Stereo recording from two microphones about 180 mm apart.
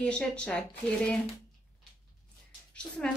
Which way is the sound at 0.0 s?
5° left (ahead or behind).